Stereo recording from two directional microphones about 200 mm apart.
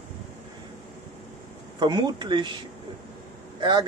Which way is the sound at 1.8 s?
20° right (ahead or behind).